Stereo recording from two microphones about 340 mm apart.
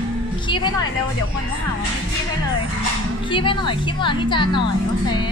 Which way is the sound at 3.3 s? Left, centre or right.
Centre.